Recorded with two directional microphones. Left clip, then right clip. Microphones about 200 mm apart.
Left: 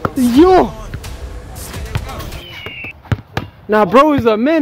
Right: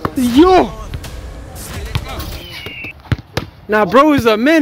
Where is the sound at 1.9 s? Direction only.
35° left (ahead or behind).